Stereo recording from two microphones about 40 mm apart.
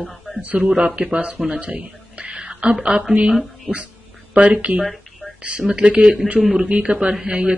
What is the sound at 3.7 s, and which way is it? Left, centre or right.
Speech, right.